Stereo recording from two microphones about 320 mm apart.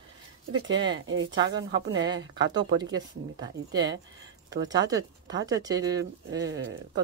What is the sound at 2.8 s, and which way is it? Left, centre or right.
Speech, centre.